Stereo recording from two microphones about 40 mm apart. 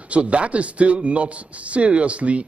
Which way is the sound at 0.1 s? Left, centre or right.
Right.